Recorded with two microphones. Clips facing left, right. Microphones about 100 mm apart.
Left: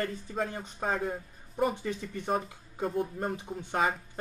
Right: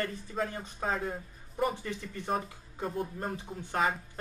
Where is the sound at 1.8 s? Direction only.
15° left (ahead or behind).